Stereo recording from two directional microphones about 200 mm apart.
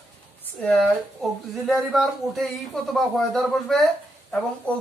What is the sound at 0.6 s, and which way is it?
Speech, 5° left (ahead or behind).